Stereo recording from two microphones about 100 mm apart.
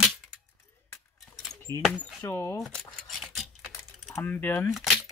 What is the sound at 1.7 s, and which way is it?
Speech, 40° right (ahead or behind).